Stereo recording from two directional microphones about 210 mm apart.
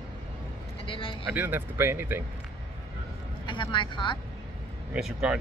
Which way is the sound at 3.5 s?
20° left (ahead or behind).